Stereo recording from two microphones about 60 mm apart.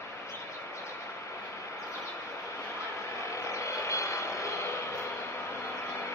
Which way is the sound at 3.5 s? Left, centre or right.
Left.